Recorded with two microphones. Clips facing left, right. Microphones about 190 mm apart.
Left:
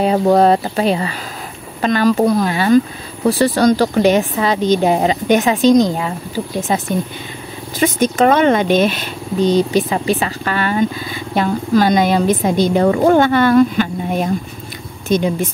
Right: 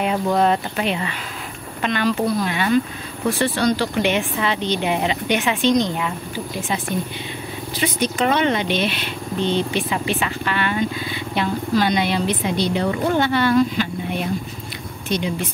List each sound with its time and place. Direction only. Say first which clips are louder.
0.0 s a woman's voice: left 7 dB; 40° left (ahead or behind)
7.8 s speech: left 7 dB; 45° left (ahead or behind)